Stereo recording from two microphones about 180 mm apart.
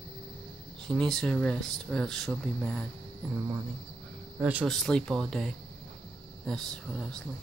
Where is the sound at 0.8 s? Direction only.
Centre (ahead or behind).